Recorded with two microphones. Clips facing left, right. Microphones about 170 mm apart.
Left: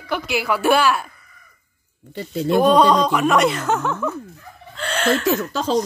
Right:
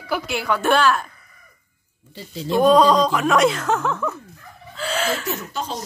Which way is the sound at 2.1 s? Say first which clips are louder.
Left 4 dB; 60° left (ahead or behind).